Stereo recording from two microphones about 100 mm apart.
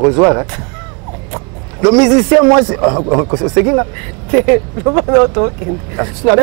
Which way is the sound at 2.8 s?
35° right (ahead or behind).